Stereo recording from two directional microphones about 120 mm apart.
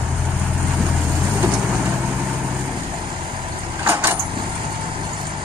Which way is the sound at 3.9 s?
20° right (ahead or behind).